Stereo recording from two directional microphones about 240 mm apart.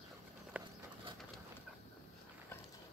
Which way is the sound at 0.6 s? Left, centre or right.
Centre.